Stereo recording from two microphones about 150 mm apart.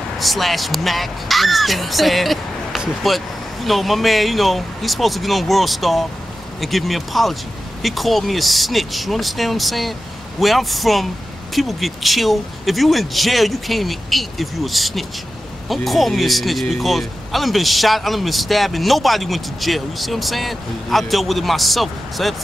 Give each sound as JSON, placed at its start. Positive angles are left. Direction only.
{"t": 0.2, "sound": "speech", "side_deg": 0}